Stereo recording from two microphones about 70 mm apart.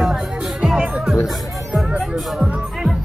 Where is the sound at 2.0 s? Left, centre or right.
Centre.